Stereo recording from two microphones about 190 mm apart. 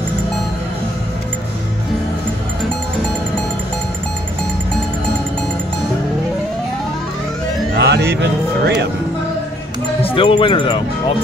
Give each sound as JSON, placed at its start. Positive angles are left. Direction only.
{"t": 3.0, "sound": "music", "side_deg": 5}
{"t": 7.7, "sound": "music", "side_deg": -60}
{"t": 10.0, "sound": "speech", "side_deg": 30}